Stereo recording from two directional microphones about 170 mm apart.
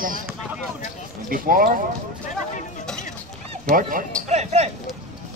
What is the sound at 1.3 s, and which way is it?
Speech, 55° right (ahead or behind).